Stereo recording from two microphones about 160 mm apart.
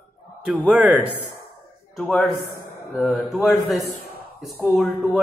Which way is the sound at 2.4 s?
65° left (ahead or behind).